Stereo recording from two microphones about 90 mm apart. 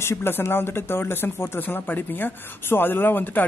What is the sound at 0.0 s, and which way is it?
Speech, 25° left (ahead or behind).